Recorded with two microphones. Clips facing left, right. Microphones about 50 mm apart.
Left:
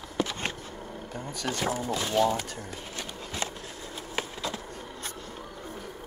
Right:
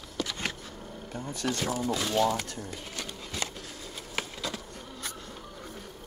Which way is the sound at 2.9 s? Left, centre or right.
Left.